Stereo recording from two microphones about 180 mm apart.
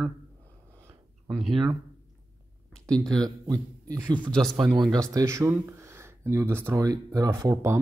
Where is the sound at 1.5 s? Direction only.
25° right (ahead or behind).